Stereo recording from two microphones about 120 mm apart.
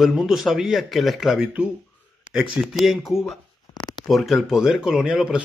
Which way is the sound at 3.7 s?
40° left (ahead or behind).